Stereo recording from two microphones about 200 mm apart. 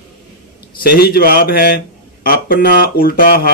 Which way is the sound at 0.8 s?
50° left (ahead or behind).